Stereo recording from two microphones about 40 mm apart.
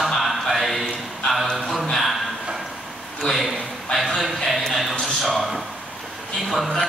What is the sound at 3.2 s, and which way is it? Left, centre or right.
A man's voice, centre.